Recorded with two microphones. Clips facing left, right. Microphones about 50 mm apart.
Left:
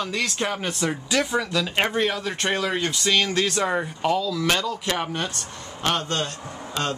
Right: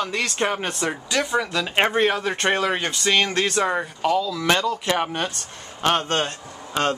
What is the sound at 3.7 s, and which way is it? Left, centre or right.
Speech, centre.